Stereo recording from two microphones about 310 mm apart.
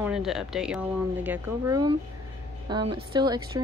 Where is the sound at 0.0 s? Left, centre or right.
Centre.